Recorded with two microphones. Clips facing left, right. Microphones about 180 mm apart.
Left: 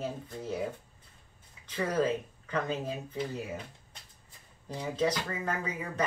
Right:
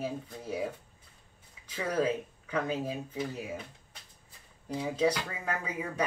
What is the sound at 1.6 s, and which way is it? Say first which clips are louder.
Speech: left 1 dB; 10° right (ahead or behind).